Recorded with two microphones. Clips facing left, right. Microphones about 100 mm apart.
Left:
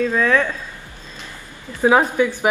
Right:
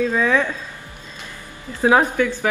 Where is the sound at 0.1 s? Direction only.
15° right (ahead or behind).